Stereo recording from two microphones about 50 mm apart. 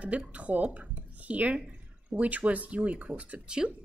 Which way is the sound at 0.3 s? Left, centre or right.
Right.